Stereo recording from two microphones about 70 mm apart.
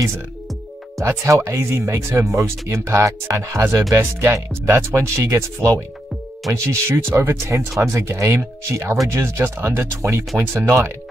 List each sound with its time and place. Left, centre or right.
0.9 s speech: right